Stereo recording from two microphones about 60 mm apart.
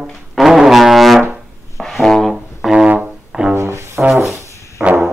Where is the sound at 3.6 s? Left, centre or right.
Right.